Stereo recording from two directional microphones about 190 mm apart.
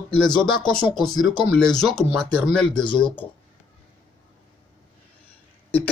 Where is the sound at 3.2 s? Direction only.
30° left (ahead or behind).